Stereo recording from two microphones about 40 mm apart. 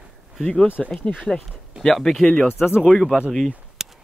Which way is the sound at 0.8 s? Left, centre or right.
Left.